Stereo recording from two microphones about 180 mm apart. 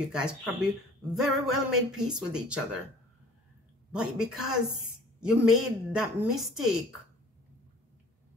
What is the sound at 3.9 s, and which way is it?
Speech, 5° right (ahead or behind).